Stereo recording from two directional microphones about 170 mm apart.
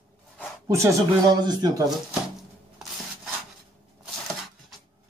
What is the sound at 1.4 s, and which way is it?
Speech, 25° right (ahead or behind).